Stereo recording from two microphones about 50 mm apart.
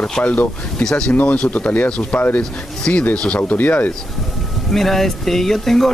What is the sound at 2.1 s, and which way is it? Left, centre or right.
Speech, left.